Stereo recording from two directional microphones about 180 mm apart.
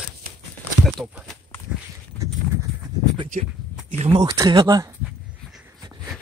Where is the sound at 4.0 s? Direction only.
30° right (ahead or behind).